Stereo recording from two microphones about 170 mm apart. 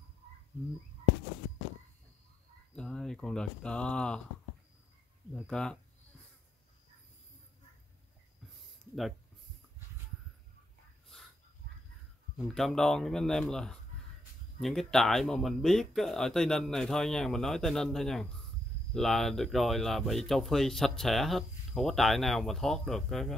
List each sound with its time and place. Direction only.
2.7 s speech: 5° left (ahead or behind)
5.3 s speech: 5° left (ahead or behind)
12.4 s speech: centre (ahead or behind)